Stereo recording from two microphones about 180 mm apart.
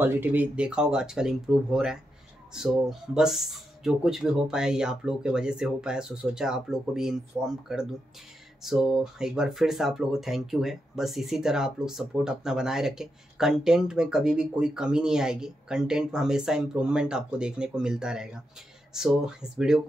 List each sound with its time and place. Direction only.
0.0 s speech: 10° right (ahead or behind)